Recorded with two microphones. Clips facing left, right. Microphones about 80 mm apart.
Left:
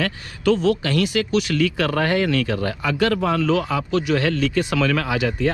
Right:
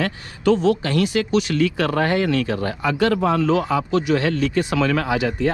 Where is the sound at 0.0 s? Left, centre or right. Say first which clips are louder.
Right 1 dB; right.